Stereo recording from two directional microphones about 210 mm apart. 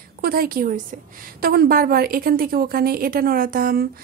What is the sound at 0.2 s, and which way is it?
A woman's voice, 45° right (ahead or behind).